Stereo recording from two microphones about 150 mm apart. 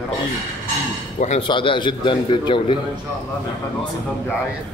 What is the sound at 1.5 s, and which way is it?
A man's voice, 35° left (ahead or behind).